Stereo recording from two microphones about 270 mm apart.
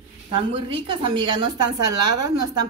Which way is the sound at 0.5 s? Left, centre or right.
Centre.